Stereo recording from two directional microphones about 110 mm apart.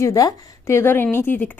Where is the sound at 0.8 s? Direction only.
20° left (ahead or behind).